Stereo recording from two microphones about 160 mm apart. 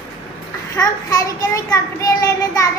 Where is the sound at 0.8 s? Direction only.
20° left (ahead or behind).